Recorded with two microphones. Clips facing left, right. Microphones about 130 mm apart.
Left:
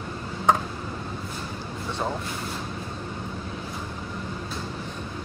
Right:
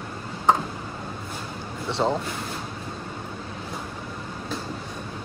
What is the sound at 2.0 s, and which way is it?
Speech, 20° right (ahead or behind).